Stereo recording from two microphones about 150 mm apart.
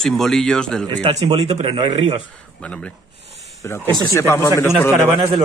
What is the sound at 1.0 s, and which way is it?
Speech, 45° right (ahead or behind).